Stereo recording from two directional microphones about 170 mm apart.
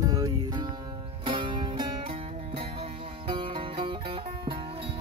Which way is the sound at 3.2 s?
30° right (ahead or behind).